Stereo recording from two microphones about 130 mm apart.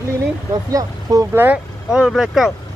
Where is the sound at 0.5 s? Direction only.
30° right (ahead or behind).